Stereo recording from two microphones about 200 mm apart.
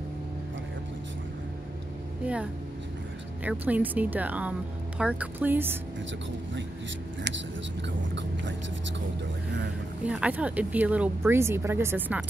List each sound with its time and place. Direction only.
3.4 s speech: 10° right (ahead or behind)
8.1 s speech: 60° right (ahead or behind)
10.0 s speech: 5° right (ahead or behind)